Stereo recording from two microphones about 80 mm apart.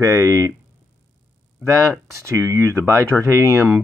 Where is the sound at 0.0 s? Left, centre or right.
Right.